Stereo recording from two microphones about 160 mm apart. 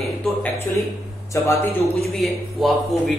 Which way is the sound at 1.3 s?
20° left (ahead or behind).